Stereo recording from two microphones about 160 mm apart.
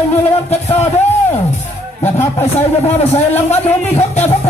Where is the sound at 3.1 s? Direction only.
45° left (ahead or behind).